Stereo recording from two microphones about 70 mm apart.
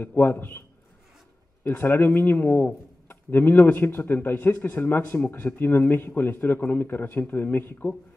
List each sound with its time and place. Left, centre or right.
0.0 s a man's voice: left